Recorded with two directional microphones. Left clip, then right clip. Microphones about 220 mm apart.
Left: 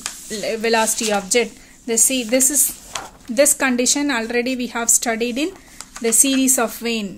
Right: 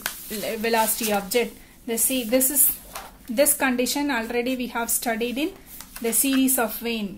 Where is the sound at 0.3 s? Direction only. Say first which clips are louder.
Left 6 dB; 25° left (ahead or behind).